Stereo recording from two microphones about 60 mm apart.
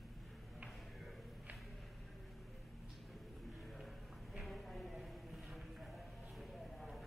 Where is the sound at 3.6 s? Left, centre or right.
Centre.